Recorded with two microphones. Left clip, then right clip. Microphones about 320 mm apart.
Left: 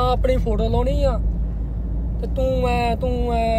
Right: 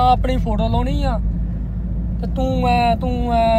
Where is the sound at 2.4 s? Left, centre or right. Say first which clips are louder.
Right 3 dB; centre.